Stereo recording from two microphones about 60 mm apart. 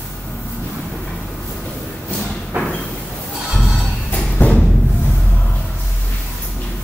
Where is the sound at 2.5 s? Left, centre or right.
Right.